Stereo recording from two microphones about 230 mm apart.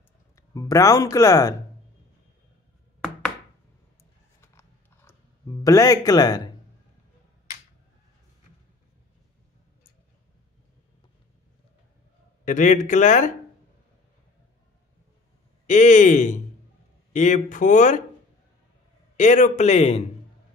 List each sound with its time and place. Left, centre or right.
0.4 s speech: centre
4.4 s a sound: centre
12.4 s speech: left
15.6 s speech: left
19.1 s speech: left